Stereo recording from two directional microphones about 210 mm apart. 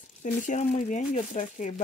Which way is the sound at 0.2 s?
35° left (ahead or behind).